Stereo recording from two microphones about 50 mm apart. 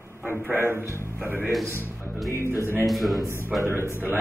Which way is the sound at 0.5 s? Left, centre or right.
Right.